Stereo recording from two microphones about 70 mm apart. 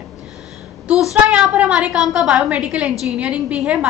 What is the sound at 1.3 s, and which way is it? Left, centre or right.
A woman's voice, centre.